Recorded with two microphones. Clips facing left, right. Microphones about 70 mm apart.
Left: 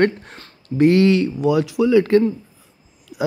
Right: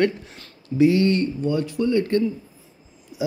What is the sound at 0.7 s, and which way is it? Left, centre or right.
Speech, left.